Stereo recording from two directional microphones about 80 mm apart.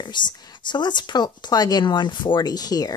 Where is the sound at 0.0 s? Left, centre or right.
Left.